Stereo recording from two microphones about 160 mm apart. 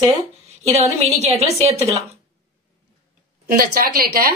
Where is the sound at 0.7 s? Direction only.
45° right (ahead or behind).